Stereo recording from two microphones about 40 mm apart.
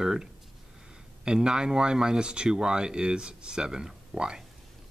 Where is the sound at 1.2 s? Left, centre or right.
Right.